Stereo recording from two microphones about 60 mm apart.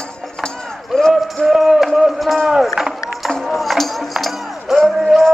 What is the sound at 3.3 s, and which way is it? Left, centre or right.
Music, centre.